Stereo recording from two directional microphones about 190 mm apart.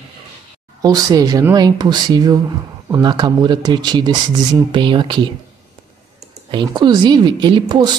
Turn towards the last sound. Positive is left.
turn(degrees=-25)  # may be behind; listen again after turning